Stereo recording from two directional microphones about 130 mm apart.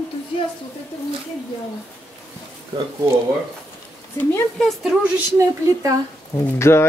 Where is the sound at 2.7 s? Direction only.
30° right (ahead or behind).